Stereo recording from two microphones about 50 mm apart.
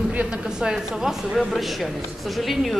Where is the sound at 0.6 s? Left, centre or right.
Centre.